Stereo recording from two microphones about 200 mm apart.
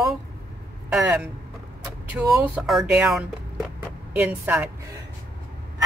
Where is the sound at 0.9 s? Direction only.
5° right (ahead or behind).